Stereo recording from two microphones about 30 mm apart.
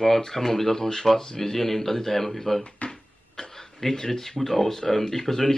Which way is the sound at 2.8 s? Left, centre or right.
Left.